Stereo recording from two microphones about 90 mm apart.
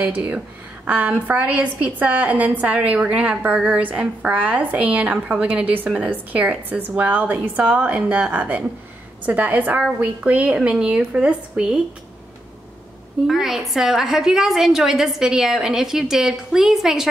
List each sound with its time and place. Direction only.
0.0 s a woman's voice: 15° right (ahead or behind)
13.3 s a woman's voice: 5° right (ahead or behind)